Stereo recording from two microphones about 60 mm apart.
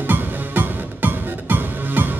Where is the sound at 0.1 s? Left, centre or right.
Right.